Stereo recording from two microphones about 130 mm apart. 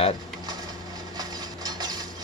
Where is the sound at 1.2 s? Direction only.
30° right (ahead or behind).